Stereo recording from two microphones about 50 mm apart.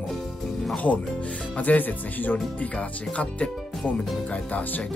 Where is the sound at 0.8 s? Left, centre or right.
Left.